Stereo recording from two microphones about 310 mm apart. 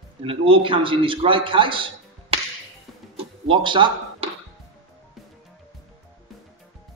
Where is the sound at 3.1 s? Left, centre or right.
Centre.